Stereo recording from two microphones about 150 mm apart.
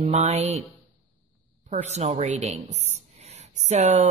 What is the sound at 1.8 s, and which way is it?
Speech, 45° right (ahead or behind).